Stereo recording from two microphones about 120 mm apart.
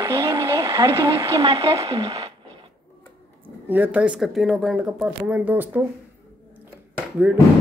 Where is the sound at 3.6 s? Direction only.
15° right (ahead or behind).